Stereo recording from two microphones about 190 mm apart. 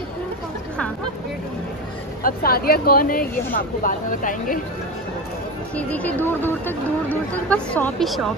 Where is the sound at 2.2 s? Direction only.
50° left (ahead or behind).